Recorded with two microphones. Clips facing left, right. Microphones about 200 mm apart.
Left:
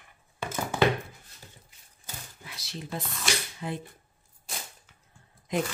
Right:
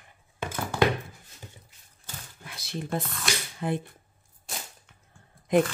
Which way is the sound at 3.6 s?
55° right (ahead or behind).